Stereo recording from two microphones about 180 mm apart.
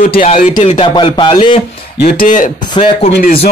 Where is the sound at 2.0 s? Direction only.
55° left (ahead or behind).